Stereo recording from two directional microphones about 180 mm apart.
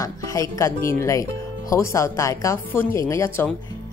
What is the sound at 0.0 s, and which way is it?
Speech, 20° left (ahead or behind).